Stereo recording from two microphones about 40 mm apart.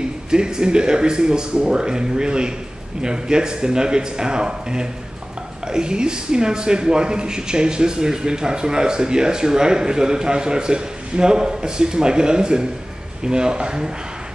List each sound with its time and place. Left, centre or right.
0.3 s a man's voice: centre